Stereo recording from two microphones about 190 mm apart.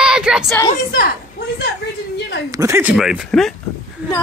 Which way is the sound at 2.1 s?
60° left (ahead or behind).